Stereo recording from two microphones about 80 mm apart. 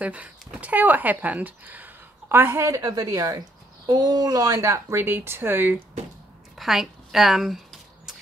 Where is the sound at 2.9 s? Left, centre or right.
Right.